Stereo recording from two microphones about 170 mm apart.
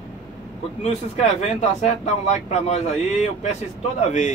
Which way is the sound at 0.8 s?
40° left (ahead or behind).